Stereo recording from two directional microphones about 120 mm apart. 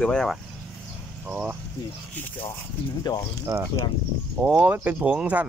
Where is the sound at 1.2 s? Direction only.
10° right (ahead or behind).